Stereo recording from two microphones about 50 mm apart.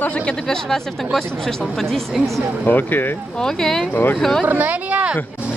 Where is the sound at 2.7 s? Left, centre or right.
Left.